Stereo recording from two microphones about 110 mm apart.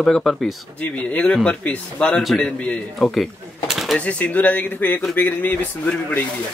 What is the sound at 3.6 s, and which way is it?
Bird, centre (ahead or behind).